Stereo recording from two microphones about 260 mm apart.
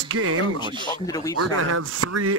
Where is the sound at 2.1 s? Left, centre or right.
Right.